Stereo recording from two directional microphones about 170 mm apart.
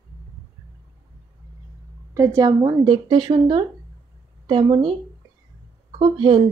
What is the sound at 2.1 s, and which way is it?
A woman's voice, 20° right (ahead or behind).